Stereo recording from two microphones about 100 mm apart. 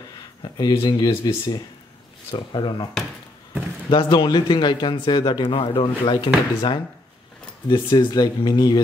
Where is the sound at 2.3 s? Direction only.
55° left (ahead or behind).